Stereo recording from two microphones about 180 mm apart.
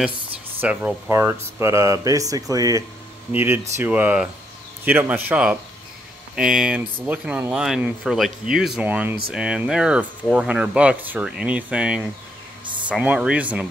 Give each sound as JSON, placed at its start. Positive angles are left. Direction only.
{"t": 0.6, "sound": "speech", "side_deg": -10}